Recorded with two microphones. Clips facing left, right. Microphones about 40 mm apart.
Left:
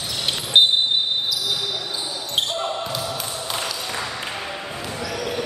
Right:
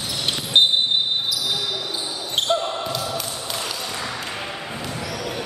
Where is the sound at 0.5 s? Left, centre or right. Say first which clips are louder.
Left 1 dB; centre.